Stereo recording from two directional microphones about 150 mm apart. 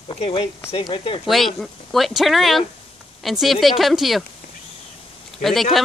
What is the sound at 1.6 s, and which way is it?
Speech, centre (ahead or behind).